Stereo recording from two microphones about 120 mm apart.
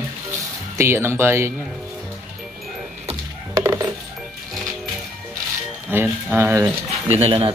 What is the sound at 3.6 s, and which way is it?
Music, 25° right (ahead or behind).